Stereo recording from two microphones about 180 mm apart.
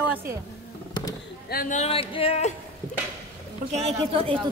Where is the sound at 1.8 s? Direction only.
30° left (ahead or behind).